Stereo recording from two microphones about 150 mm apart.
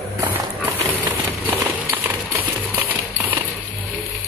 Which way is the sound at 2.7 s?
10° right (ahead or behind).